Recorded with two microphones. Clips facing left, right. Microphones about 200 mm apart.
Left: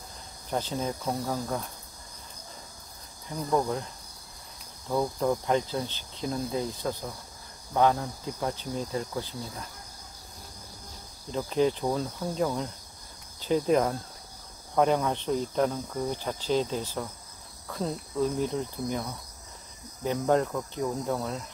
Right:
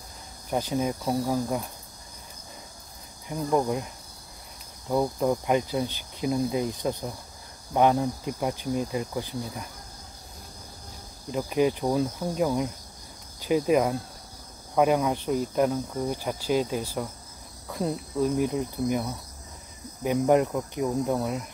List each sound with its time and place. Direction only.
0.5 s cricket: 10° right (ahead or behind)
3.3 s cricket: 15° right (ahead or behind)
11.3 s cricket: 10° right (ahead or behind)